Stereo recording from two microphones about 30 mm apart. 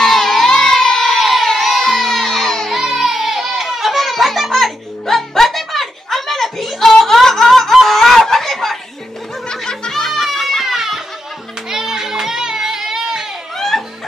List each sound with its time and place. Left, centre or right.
0.1 s crowd: centre
1.5 s music: centre
2.7 s music: centre
7.2 s snicker: centre
7.9 s a sound: centre
9.5 s music: left
10.2 s a sound: centre
10.6 s children playing: centre
11.7 s music: centre
13.6 s music: centre